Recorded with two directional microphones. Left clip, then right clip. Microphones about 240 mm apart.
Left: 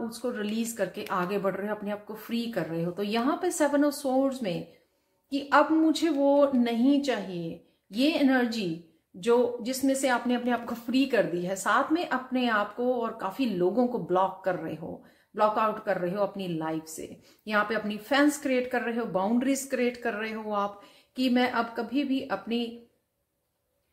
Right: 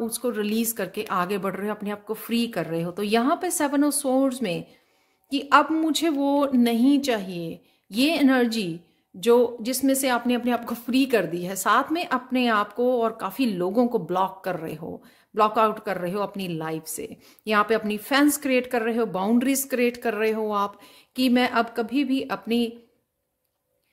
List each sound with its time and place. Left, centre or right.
0.2 s speech: right